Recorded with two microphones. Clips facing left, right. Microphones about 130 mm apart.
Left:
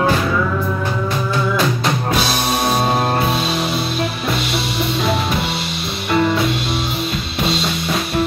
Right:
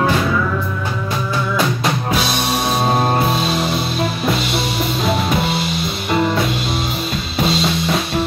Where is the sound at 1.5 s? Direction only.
Centre (ahead or behind).